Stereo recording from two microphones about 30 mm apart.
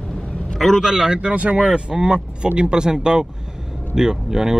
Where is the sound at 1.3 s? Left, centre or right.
Right.